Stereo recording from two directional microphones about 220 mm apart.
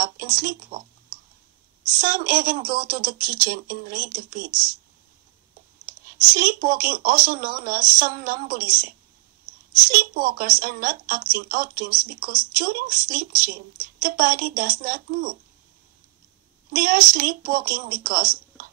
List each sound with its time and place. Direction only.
0.0 s speech: 40° right (ahead or behind)
2.0 s speech: 40° right (ahead or behind)
6.3 s speech: 40° right (ahead or behind)
16.7 s speech: 40° right (ahead or behind)